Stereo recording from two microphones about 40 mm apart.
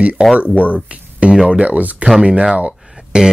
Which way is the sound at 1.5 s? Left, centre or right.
Right.